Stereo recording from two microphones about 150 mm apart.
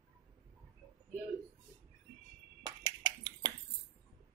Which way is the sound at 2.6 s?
25° right (ahead or behind).